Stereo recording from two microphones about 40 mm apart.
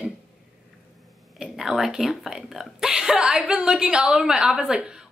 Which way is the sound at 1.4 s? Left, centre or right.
Centre.